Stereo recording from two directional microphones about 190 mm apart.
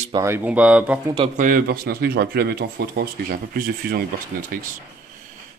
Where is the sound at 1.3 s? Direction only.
45° right (ahead or behind).